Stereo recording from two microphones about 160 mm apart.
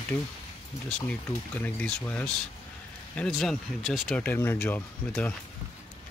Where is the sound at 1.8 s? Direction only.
10° left (ahead or behind).